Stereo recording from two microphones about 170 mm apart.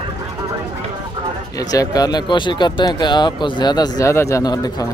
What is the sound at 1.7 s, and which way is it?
Speech, 20° left (ahead or behind).